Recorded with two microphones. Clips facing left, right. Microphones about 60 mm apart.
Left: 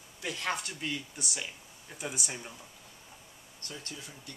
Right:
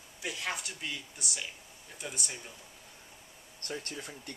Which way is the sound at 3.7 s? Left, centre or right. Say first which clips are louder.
Right 5 dB; right.